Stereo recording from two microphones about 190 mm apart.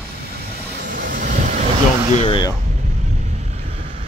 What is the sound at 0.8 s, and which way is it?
Vehicle, 45° right (ahead or behind).